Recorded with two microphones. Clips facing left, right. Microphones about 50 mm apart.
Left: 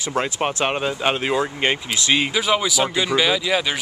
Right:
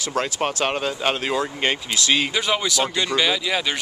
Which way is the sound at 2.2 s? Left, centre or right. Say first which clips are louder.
Left 2 dB; centre.